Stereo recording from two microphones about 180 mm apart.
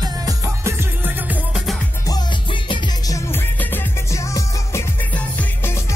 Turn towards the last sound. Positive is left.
turn(degrees=10)  # may be behind; listen again after turning